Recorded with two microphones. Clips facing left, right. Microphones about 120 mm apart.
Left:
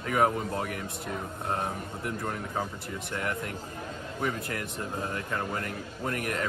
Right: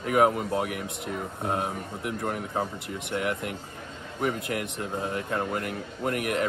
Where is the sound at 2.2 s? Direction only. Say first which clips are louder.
Right 5 dB; 25° right (ahead or behind).